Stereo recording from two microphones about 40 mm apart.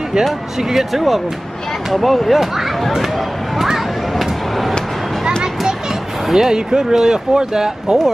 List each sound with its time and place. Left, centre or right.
0.6 s speech: centre
3.5 s a sound: centre
6.3 s speech: centre